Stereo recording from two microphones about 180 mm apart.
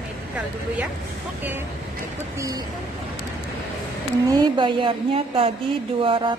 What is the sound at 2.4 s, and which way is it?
Speech, 20° right (ahead or behind).